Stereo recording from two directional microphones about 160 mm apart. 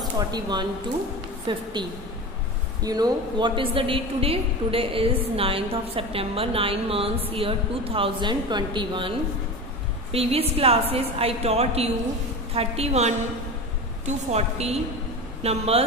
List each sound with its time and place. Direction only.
0.3 s a woman's voice: 25° right (ahead or behind)
2.8 s a woman's voice: 25° right (ahead or behind)
10.1 s a woman's voice: 40° right (ahead or behind)